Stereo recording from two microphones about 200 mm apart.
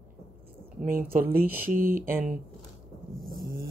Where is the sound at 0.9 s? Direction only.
45° right (ahead or behind).